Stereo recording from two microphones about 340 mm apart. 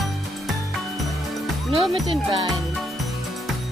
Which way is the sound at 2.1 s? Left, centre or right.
Centre.